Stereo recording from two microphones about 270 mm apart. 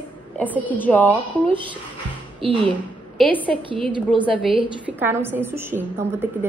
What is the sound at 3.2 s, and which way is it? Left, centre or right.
Speech, centre.